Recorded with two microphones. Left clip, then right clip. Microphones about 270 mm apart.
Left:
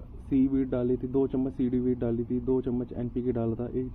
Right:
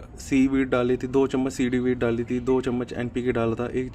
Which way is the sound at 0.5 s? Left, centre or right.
Right.